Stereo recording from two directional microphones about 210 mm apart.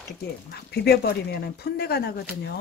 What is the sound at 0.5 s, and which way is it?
Speech, 50° left (ahead or behind).